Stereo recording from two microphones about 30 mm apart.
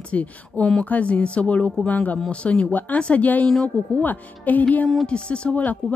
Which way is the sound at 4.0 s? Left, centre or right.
Left.